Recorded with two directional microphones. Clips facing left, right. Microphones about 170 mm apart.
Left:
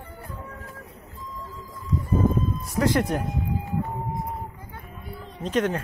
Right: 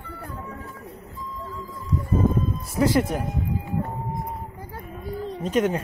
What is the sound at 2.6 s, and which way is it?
Speech, centre (ahead or behind).